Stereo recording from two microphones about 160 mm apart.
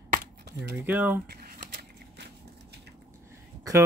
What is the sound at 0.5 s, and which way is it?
Speech, 90° right.